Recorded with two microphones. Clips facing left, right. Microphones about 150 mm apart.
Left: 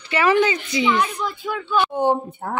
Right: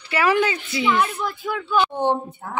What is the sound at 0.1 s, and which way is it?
Speech, 5° right (ahead or behind).